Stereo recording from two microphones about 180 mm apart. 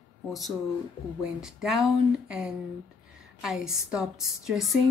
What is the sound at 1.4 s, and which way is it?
A woman's voice, centre (ahead or behind).